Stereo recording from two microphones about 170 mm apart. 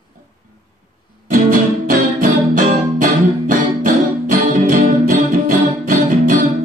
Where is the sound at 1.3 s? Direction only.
50° right (ahead or behind).